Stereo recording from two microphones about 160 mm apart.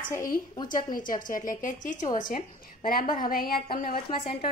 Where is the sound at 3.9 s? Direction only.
35° left (ahead or behind).